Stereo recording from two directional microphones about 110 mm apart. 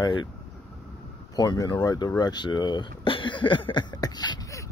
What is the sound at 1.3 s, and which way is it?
Speech, 40° left (ahead or behind).